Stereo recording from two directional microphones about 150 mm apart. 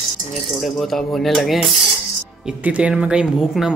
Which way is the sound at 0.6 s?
Centre (ahead or behind).